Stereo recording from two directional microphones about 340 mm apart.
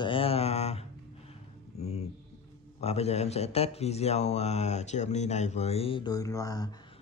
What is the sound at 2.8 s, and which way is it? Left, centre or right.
Speech, centre.